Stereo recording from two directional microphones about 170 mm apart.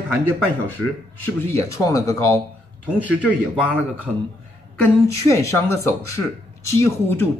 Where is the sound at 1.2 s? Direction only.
15° left (ahead or behind).